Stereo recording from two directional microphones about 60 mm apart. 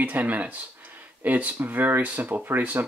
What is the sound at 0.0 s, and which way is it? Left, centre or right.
Speech, right.